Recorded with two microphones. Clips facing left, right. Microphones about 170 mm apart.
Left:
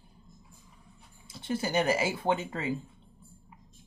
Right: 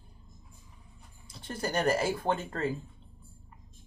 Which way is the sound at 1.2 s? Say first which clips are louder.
Left 3 dB; 5° left (ahead or behind).